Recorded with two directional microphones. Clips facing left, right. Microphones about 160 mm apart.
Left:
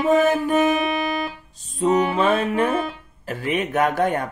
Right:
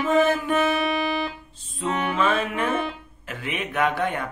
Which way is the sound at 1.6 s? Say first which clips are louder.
Left 8 dB; 40° left (ahead or behind).